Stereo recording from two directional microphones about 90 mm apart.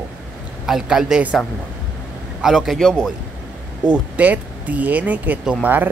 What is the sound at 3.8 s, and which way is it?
Speech, 15° right (ahead or behind).